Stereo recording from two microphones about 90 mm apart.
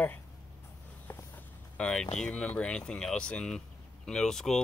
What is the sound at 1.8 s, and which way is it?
Speech, 5° left (ahead or behind).